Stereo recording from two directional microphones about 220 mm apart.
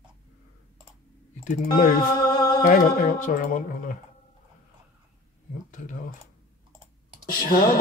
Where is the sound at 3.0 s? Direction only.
40° left (ahead or behind).